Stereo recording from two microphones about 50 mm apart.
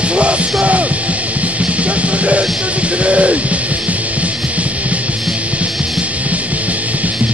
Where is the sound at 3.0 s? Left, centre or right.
Right.